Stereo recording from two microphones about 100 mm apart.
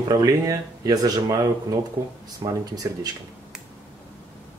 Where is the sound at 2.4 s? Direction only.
50° right (ahead or behind).